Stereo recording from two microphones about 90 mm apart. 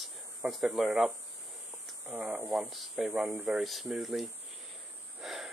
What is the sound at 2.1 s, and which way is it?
Speech, 15° right (ahead or behind).